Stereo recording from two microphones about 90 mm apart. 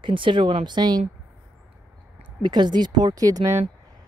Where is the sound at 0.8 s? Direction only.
50° right (ahead or behind).